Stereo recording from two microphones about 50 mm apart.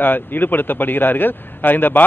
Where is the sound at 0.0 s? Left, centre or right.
Left.